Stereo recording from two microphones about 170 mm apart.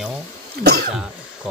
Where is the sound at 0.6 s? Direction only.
70° right (ahead or behind).